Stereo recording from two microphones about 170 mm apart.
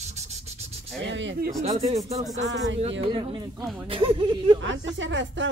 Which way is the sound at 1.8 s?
40° right (ahead or behind).